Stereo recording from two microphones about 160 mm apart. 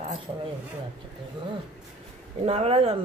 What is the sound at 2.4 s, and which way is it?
Speech, 40° right (ahead or behind).